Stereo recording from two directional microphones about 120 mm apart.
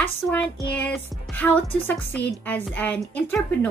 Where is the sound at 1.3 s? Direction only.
10° left (ahead or behind).